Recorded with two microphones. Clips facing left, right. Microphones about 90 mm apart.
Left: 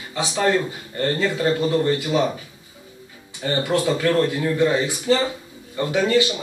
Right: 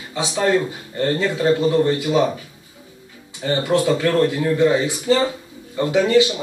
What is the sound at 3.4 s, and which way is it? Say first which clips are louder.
Speech: right 3 dB; 15° right (ahead or behind).